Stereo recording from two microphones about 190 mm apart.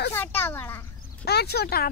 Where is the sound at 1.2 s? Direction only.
60° left (ahead or behind).